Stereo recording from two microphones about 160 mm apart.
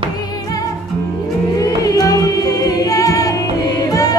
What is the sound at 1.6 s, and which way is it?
Music, 20° left (ahead or behind).